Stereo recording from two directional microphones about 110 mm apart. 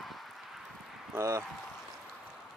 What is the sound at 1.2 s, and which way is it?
Speech, 25° right (ahead or behind).